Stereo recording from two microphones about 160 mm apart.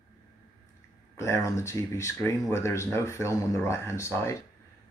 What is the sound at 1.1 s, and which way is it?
Speech, 15° left (ahead or behind).